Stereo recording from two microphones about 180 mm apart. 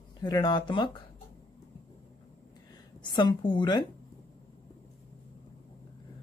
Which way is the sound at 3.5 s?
25° left (ahead or behind).